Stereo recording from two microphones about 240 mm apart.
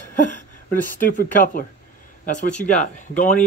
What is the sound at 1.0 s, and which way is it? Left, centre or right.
Speech, left.